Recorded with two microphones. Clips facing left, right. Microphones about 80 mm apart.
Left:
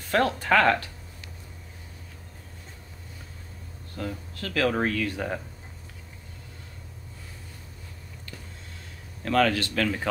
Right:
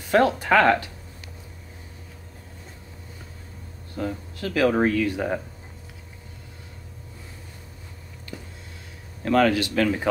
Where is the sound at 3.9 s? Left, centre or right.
Centre.